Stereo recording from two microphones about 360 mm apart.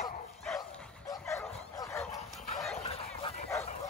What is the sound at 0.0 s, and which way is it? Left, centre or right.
Bow-wow, centre.